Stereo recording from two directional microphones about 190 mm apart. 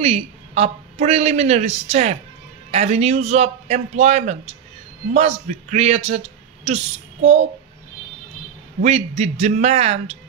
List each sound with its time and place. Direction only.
0.0 s a man's voice: 35° right (ahead or behind)
8.8 s speech: 35° right (ahead or behind)